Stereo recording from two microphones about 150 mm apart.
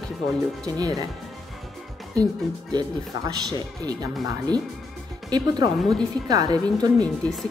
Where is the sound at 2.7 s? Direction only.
25° right (ahead or behind).